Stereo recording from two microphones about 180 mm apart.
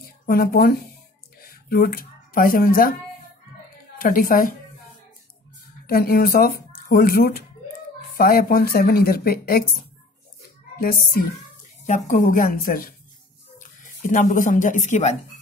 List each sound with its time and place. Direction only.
0.3 s speech: 55° left (ahead or behind)
4.0 s a woman's voice: 50° left (ahead or behind)
5.9 s speech: 55° left (ahead or behind)
10.8 s a woman's voice: 55° left (ahead or behind)